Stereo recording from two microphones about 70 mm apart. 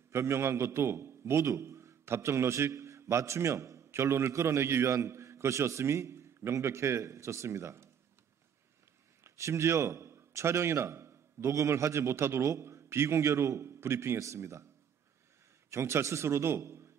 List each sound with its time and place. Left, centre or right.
0.1 s a man's voice: right
9.2 s a man's voice: right
15.7 s a man's voice: right